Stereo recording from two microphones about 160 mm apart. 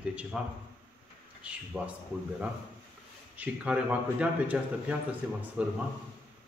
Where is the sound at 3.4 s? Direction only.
10° right (ahead or behind).